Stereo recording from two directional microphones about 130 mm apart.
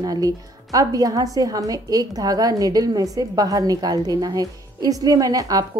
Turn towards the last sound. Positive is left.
turn(degrees=-25)  # may be behind; listen again after turning